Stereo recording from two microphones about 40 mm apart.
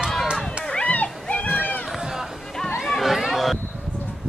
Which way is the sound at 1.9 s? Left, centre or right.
Centre.